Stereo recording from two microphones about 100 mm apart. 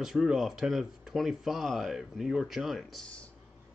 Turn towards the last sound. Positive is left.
turn(degrees=0)  # may be behind; listen again after turning